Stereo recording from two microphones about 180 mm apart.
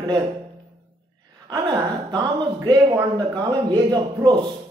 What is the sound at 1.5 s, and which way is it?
Speech, 20° right (ahead or behind).